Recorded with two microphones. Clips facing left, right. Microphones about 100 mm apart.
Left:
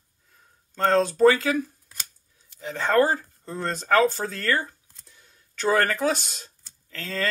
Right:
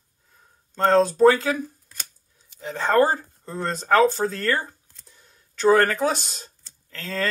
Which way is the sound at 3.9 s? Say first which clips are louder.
Right 3 dB; 35° right (ahead or behind).